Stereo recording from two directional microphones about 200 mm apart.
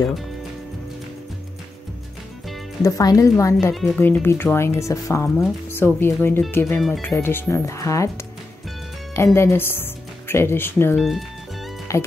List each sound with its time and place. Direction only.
2.8 s speech: 15° left (ahead or behind)
3.7 s speech: centre (ahead or behind)
9.1 s speech: 15° left (ahead or behind)
11.0 s speech: centre (ahead or behind)
11.9 s speech: 15° left (ahead or behind)